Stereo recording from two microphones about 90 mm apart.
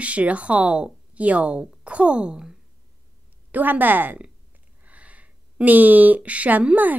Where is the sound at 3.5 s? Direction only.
20° right (ahead or behind).